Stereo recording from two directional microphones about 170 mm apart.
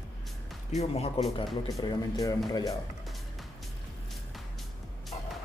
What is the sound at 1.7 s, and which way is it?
Speech, 20° left (ahead or behind).